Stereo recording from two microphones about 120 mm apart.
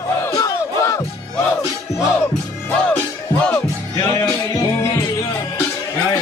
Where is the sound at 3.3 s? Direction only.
5° left (ahead or behind).